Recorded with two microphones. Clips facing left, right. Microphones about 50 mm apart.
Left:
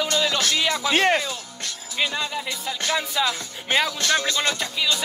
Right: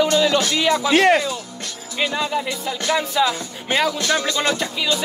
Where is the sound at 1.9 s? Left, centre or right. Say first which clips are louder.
Right 4 dB; centre.